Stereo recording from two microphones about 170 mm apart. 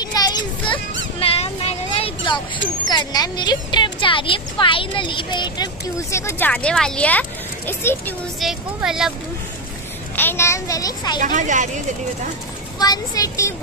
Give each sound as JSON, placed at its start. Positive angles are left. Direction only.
{"t": 0.0, "sound": "children playing", "side_deg": 25}
{"t": 1.2, "sound": "a sound", "side_deg": 35}
{"t": 2.9, "sound": "a woman's voice", "side_deg": 25}
{"t": 8.4, "sound": "speech", "side_deg": 0}
{"t": 10.1, "sound": "a child's voice", "side_deg": 15}
{"t": 11.1, "sound": "speech", "side_deg": -50}
{"t": 12.7, "sound": "a woman's voice", "side_deg": 20}